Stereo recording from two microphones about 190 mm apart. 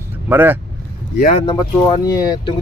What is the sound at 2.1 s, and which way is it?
Speech, 20° left (ahead or behind).